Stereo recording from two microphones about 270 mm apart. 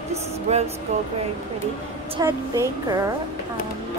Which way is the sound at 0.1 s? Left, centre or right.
Right.